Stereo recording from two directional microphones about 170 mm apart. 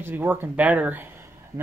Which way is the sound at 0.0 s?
10° right (ahead or behind).